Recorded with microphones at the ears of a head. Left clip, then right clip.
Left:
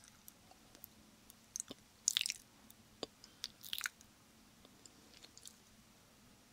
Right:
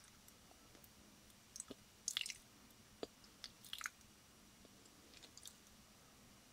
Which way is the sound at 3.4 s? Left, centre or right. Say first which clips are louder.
Left 6 dB; left.